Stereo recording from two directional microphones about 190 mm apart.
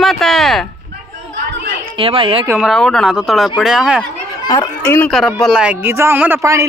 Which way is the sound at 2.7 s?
Centre (ahead or behind).